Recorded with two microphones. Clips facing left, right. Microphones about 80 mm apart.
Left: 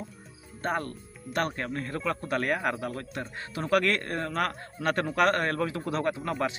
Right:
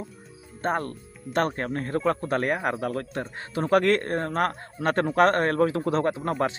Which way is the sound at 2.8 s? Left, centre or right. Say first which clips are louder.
Right 5 dB; right.